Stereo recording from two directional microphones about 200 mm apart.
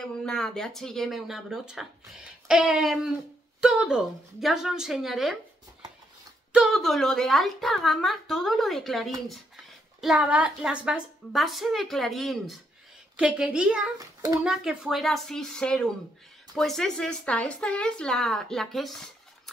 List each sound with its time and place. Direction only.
0.0 s speech: 5° left (ahead or behind)
6.5 s speech: centre (ahead or behind)
13.9 s a child's voice: 20° right (ahead or behind)
14.4 s speech: centre (ahead or behind)